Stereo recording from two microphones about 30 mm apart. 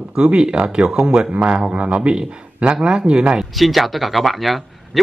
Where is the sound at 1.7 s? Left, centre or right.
Right.